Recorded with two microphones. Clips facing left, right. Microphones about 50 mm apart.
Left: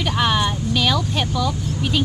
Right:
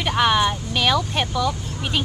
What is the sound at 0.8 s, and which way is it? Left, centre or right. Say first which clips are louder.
Speech: right 1 dB; centre.